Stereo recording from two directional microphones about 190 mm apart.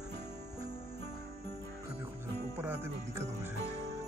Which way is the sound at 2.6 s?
10° right (ahead or behind).